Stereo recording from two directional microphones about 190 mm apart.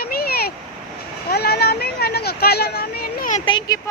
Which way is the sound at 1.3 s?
55° left (ahead or behind).